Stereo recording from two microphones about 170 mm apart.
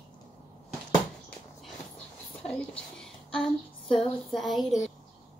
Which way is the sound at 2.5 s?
5° left (ahead or behind).